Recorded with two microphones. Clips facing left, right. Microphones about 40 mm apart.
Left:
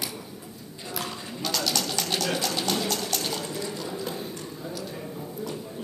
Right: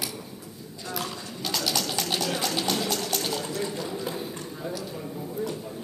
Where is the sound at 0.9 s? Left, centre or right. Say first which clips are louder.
Even; centre.